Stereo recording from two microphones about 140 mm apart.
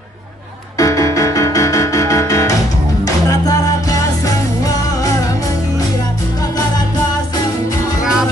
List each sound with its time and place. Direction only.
0.7 s music: 25° left (ahead or behind)